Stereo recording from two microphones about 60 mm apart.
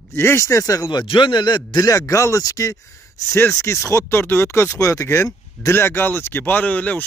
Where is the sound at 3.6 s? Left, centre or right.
Left.